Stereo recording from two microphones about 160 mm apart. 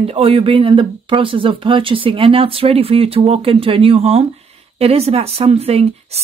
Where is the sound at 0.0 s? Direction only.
35° right (ahead or behind).